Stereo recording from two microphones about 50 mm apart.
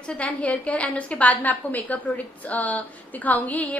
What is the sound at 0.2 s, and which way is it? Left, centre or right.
A woman's voice, left.